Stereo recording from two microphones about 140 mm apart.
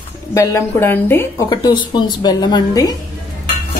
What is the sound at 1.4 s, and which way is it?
A woman's voice, 30° left (ahead or behind).